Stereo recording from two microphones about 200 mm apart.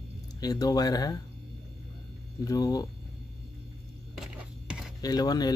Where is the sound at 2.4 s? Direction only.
15° left (ahead or behind).